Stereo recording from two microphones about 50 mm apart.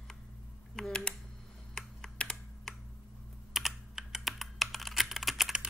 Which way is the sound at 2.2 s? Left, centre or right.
Centre.